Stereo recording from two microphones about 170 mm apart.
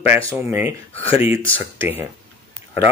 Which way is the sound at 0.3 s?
15° right (ahead or behind).